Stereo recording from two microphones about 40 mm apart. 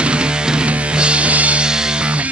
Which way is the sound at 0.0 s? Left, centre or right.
Right.